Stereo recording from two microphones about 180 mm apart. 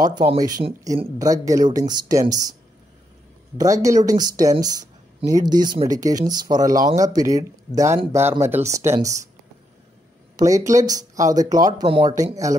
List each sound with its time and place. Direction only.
0.0 s speech: 25° right (ahead or behind)
3.5 s speech: 20° right (ahead or behind)
10.3 s speech: 20° right (ahead or behind)